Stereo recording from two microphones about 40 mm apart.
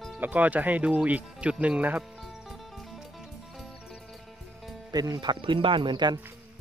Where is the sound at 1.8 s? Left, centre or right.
Right.